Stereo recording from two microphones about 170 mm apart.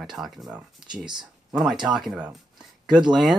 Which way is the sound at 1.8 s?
Centre (ahead or behind).